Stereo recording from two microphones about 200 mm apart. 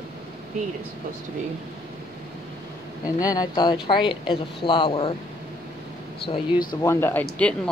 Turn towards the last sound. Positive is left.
turn(degrees=5)  # may be behind; listen again after turning